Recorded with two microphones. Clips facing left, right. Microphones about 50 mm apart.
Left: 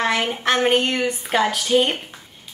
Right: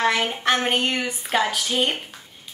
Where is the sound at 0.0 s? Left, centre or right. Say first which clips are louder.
Even; centre.